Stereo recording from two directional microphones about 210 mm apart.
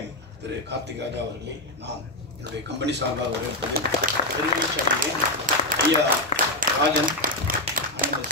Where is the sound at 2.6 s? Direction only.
55° right (ahead or behind).